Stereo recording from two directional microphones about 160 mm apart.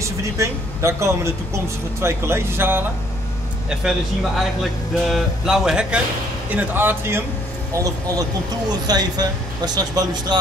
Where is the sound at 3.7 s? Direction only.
Centre (ahead or behind).